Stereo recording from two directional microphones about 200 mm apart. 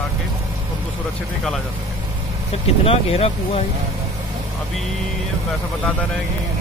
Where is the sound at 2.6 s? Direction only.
30° left (ahead or behind).